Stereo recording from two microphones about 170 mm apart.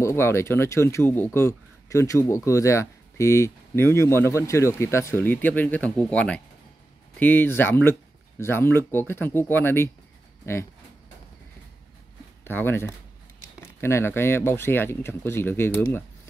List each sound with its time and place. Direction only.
0.0 s speech: 15° left (ahead or behind)
12.4 s speech: 10° left (ahead or behind)